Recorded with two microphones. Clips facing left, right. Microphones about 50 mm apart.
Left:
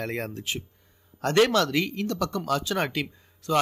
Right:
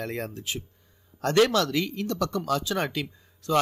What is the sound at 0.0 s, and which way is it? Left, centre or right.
Speech, left.